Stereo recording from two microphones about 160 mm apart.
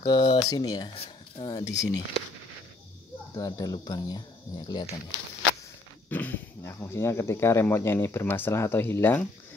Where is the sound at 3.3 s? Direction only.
25° left (ahead or behind).